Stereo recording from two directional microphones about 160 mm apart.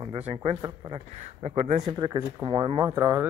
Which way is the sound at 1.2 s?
40° right (ahead or behind).